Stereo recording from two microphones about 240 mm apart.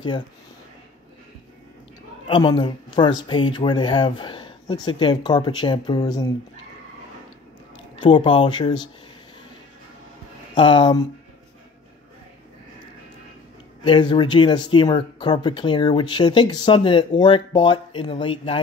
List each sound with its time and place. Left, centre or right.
2.2 s speech: centre
7.9 s speech: left
10.5 s speech: centre
13.8 s speech: centre